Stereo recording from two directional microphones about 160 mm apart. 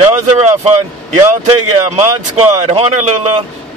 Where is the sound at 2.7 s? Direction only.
35° right (ahead or behind).